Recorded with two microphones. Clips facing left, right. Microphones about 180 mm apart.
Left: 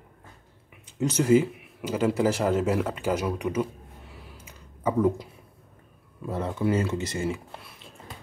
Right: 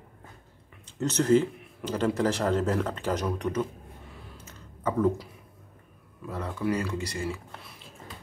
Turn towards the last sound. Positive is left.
turn(degrees=20)  # may be behind; listen again after turning